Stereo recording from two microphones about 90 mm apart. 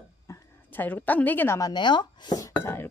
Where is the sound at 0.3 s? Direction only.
40° left (ahead or behind).